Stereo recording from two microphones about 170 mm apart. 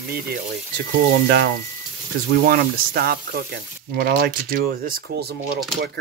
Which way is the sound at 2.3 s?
60° right (ahead or behind).